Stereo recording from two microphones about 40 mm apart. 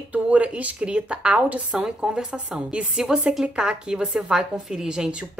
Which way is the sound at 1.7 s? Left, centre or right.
Centre.